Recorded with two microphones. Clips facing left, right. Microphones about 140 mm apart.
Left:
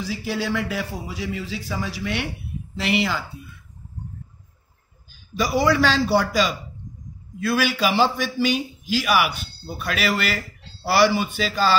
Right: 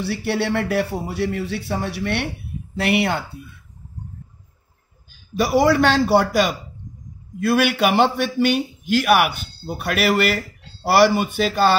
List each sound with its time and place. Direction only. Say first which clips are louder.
0.0 s a man's voice: right 4 dB; 70° right (ahead or behind)
5.4 s a man's voice: right 3 dB; 60° right (ahead or behind)